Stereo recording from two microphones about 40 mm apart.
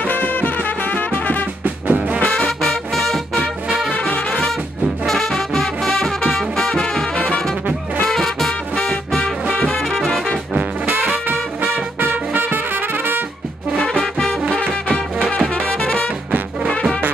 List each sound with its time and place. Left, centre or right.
0.1 s music: left
1.6 s music: right
2.3 s music: centre
3.6 s brass instrument: centre
4.1 s music: left
5.0 s music: centre
7.2 s music: left
8.1 s music: centre
8.7 s music: centre
9.8 s brass instrument: centre
12.0 s music: right
13.7 s music: left
14.6 s music: left
15.6 s brass instrument: left